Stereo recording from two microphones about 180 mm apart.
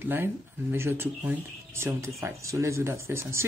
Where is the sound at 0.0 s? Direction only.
10° right (ahead or behind).